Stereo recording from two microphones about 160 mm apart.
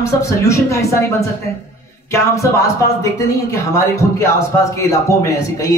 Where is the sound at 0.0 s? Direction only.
20° left (ahead or behind).